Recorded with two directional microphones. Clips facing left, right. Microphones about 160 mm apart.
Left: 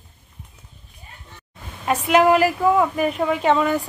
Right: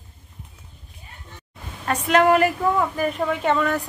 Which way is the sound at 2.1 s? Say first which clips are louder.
Left 1 dB; 5° left (ahead or behind).